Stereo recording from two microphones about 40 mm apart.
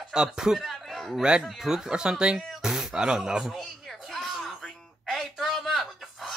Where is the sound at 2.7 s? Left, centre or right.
Centre.